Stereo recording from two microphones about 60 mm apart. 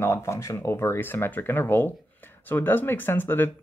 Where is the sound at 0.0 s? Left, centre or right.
Left.